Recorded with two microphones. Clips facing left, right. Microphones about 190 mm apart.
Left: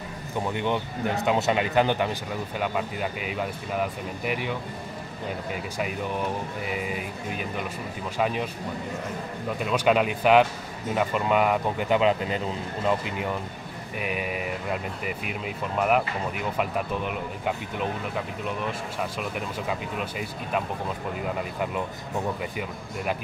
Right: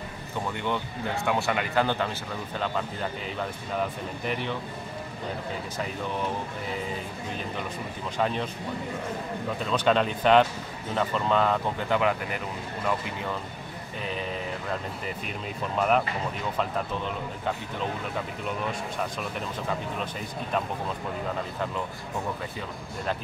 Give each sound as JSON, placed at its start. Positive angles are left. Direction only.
{"t": 0.5, "sound": "speech", "side_deg": 20}
{"t": 6.7, "sound": "speech", "side_deg": 10}
{"t": 9.6, "sound": "speech", "side_deg": 10}
{"t": 19.7, "sound": "speech", "side_deg": 10}